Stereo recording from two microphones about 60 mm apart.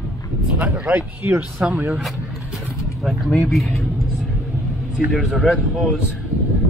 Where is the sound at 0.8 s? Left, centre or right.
Right.